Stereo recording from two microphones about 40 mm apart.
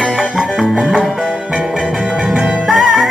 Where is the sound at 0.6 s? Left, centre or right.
Centre.